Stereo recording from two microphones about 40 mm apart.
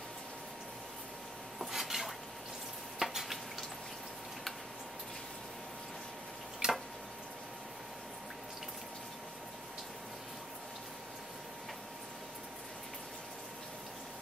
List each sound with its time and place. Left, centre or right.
1.6 s dishes: centre
3.0 s stir: centre
6.6 s a sound: right